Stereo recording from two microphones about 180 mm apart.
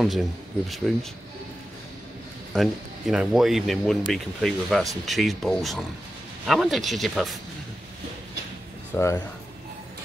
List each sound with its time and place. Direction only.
0.0 s speech: centre (ahead or behind)
2.5 s speech: centre (ahead or behind)
8.9 s speech: 15° left (ahead or behind)